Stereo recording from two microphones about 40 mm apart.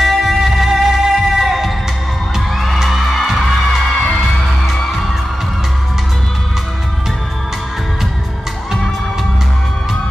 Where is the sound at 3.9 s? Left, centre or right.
Left.